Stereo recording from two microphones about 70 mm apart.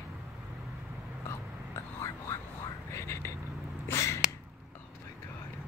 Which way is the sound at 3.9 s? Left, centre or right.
Left.